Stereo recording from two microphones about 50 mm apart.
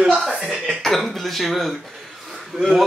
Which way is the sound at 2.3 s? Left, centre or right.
Centre.